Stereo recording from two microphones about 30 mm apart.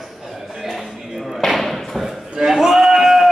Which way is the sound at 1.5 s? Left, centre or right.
Centre.